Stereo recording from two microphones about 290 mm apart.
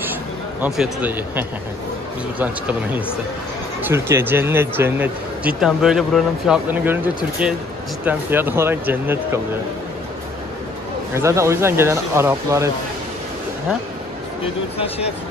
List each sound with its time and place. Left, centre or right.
0.1 s a sound: centre
2.3 s speech: centre
8.0 s speech: centre
11.1 s speech: centre
14.8 s speech: left